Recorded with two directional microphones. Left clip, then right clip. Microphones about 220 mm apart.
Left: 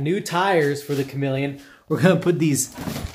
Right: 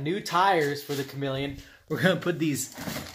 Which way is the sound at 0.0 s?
10° left (ahead or behind).